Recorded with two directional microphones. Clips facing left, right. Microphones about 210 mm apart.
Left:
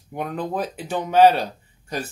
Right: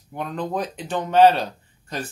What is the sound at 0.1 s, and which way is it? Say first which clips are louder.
Speech: even; 10° left (ahead or behind).